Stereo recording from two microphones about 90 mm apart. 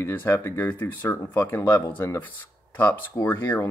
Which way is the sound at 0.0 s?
25° left (ahead or behind).